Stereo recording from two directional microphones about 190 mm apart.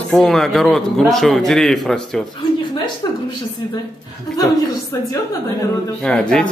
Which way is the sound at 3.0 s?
20° left (ahead or behind).